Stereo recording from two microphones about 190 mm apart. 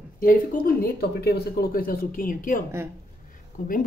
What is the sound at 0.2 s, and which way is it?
Speech, 45° left (ahead or behind).